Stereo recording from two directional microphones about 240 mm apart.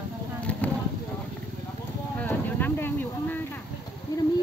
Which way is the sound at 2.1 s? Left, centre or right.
Centre.